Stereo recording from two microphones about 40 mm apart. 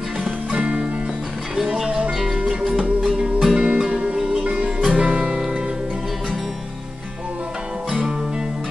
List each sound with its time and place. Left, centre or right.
0.6 s music: right